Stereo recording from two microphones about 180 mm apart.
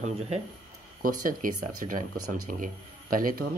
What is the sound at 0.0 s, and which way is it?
Speech, 35° right (ahead or behind).